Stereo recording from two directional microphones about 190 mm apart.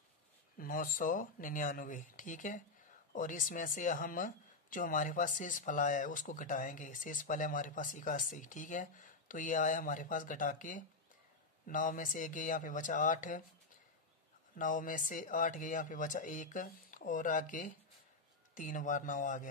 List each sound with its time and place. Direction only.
0.6 s speech: 45° left (ahead or behind)
14.6 s a man's voice: 45° left (ahead or behind)